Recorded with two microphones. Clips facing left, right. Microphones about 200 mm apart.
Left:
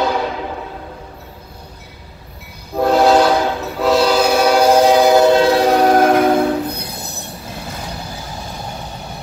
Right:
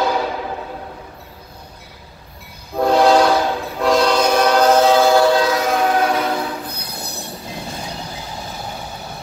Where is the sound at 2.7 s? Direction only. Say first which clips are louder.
Left 1 dB; 5° left (ahead or behind); by 6.5 s 50° left (ahead or behind).